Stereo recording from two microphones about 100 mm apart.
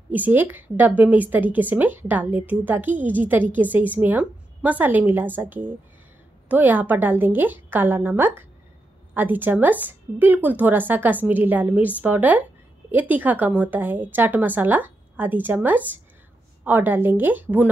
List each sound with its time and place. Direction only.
0.1 s a woman's voice: 20° right (ahead or behind)